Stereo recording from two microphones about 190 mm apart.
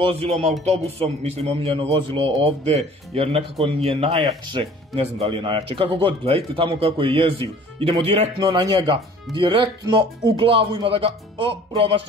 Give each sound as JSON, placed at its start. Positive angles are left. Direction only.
{"t": 0.0, "sound": "music", "side_deg": -30}
{"t": 0.7, "sound": "speech", "side_deg": -30}